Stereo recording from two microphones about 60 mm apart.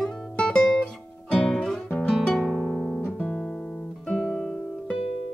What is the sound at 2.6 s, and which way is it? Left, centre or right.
Music, left.